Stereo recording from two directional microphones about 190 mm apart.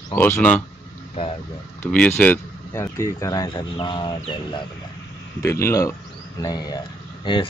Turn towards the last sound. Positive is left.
turn(degrees=20)  # may be behind; listen again after turning